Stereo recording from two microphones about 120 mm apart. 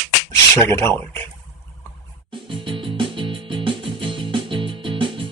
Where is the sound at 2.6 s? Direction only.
45° right (ahead or behind).